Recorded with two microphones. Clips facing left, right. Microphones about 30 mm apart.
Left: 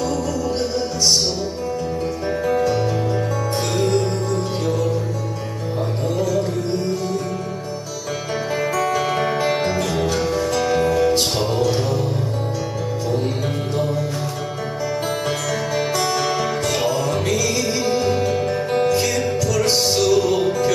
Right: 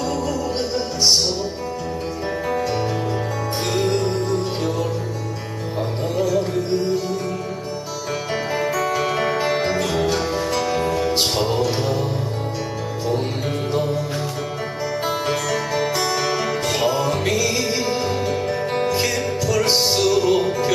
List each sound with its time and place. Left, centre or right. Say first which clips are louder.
0.0 s music: left 1 dB; centre
2.6 s music: left 3 dB; right
3.7 s music: even; centre
6.1 s music: right 1 dB; centre
8.5 s music: left 1 dB; centre
15.2 s music: right 1 dB; centre